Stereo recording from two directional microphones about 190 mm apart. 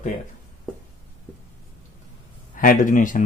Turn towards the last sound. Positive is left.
turn(degrees=45)  # may be behind; listen again after turning